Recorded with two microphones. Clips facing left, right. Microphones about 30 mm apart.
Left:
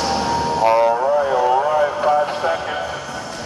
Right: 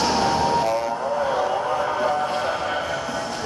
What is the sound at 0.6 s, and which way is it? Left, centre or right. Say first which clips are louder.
Vehicle: left 8 dB; left.